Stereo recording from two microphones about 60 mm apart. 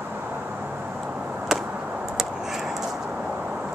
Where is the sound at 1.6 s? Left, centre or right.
Right.